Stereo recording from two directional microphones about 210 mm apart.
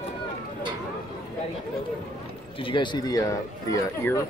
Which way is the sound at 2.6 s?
25° left (ahead or behind).